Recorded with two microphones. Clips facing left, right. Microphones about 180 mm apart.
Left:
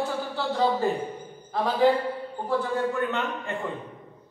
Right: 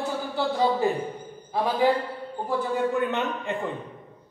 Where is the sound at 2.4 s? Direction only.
15° right (ahead or behind).